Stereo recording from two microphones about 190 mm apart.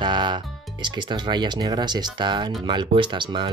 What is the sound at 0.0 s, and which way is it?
Music, 25° right (ahead or behind).